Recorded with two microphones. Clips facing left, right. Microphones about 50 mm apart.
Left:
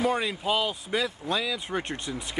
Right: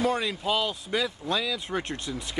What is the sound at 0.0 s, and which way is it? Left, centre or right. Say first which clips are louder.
Speech: even; centre.